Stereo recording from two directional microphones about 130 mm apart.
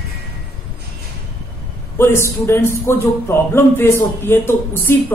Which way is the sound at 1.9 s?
20° left (ahead or behind).